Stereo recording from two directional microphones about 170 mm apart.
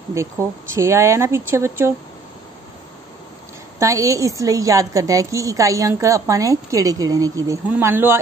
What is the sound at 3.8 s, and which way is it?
A woman's voice, 20° right (ahead or behind).